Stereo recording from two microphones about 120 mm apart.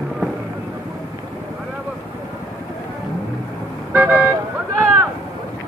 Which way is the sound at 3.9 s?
15° right (ahead or behind).